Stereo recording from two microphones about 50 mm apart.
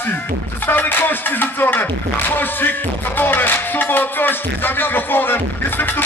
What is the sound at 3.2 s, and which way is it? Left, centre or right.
Speech, left.